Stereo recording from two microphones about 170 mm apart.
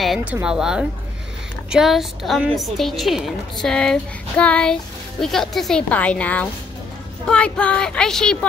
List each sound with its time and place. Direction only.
0.0 s a woman's voice: 5° right (ahead or behind)